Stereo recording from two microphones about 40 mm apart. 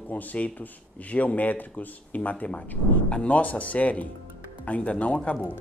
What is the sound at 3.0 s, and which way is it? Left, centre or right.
Speech, left.